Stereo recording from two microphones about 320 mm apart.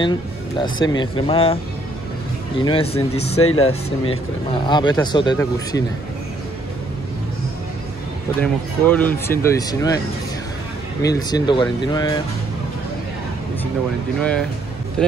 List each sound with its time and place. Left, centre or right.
0.0 s speech: centre
2.6 s speech: centre
3.3 s speech: left
4.0 s speech: centre
8.4 s speech: centre